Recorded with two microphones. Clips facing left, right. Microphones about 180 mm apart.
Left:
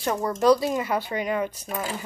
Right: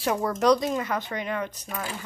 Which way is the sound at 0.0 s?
5° right (ahead or behind).